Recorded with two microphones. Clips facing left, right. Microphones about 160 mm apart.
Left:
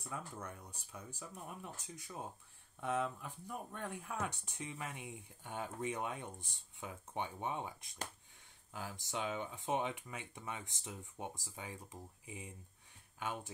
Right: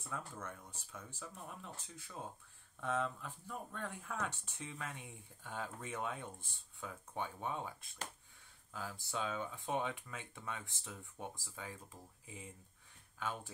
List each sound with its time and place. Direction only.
0.1 s speech: 15° left (ahead or behind)